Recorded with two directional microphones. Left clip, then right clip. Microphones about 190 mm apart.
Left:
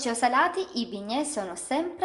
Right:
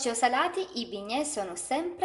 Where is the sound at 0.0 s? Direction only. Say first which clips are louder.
Left 3 dB; centre (ahead or behind).